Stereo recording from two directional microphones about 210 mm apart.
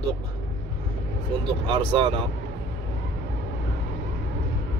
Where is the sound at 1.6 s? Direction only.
20° right (ahead or behind).